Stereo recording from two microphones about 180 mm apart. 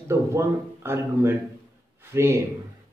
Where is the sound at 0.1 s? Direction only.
15° right (ahead or behind).